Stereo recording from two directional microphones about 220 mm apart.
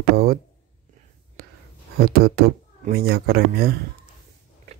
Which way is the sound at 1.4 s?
45° right (ahead or behind).